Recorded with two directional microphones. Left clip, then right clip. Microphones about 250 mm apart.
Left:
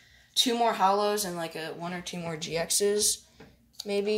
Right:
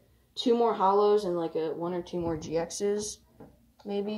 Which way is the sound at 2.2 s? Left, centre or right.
Left.